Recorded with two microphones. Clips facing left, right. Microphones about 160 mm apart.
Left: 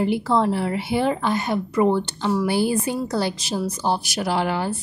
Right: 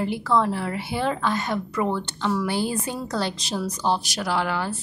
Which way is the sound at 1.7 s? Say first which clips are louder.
Left 6 dB; 25° left (ahead or behind).